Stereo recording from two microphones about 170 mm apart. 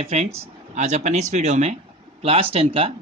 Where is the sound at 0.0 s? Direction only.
40° right (ahead or behind).